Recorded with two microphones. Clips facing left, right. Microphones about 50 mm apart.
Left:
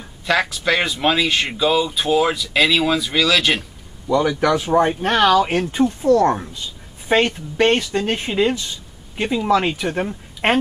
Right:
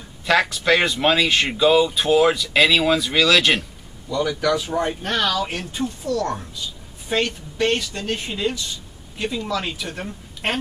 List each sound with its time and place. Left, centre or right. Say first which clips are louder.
0.3 s speech: right 1 dB; centre
4.1 s speech: left 4 dB; left